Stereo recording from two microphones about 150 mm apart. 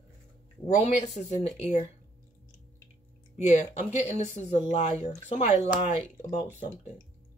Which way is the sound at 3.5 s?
45° left (ahead or behind).